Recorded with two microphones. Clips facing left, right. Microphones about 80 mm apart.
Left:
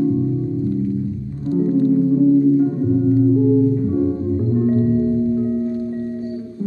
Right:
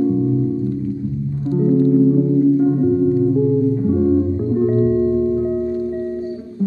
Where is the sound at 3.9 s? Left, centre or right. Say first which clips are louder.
Right 3 dB; centre.